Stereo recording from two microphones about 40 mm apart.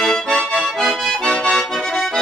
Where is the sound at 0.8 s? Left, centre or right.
Centre.